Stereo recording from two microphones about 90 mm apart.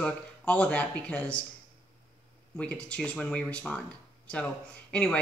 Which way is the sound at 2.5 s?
10° left (ahead or behind).